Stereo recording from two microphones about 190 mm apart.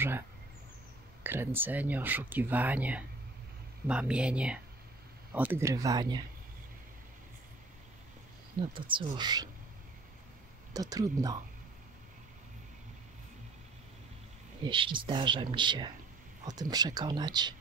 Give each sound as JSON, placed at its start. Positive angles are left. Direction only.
{"t": 1.2, "sound": "speech", "side_deg": -10}
{"t": 8.7, "sound": "speech", "side_deg": -25}
{"t": 10.7, "sound": "speech", "side_deg": -20}
{"t": 14.7, "sound": "speech", "side_deg": -25}